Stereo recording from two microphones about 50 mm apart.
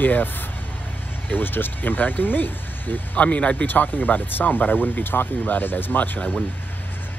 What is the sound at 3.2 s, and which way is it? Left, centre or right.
Speech, left.